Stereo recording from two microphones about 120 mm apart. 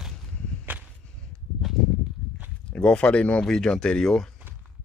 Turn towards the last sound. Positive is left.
turn(degrees=5)  # may be behind; listen again after turning